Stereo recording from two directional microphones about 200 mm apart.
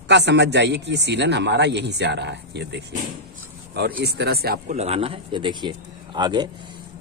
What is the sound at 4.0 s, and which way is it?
Speech, 55° right (ahead or behind).